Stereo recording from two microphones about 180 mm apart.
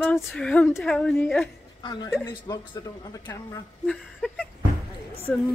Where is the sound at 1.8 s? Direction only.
25° left (ahead or behind).